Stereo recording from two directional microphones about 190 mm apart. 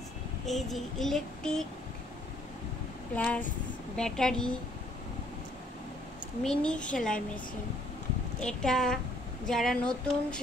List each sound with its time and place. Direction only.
0.5 s child singing: centre (ahead or behind)
3.2 s speech: 5° left (ahead or behind)
3.9 s child singing: 5° left (ahead or behind)
6.4 s child singing: 5° left (ahead or behind)
8.4 s child singing: 5° left (ahead or behind)